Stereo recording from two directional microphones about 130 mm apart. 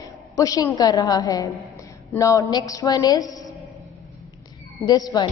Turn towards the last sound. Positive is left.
turn(degrees=30)  # may be behind; listen again after turning